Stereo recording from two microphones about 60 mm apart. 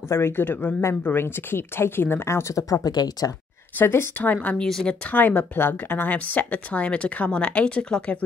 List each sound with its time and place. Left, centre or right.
0.1 s speech: left
3.7 s a woman's voice: left
4.6 s speech: centre
5.0 s a woman's voice: left